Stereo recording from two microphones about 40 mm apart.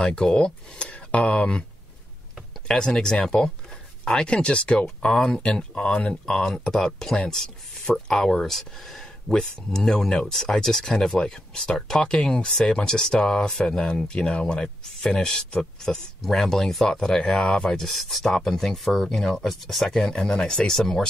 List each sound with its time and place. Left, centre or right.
0.2 s speech: centre
2.7 s speech: centre
6.2 s speech: centre
9.4 s speech: centre
11.1 s speech: left; by 16.9 s centre
17.0 s speech: centre
17.6 s speech: centre